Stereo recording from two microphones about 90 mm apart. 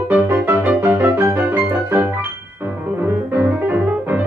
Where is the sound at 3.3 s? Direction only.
20° right (ahead or behind).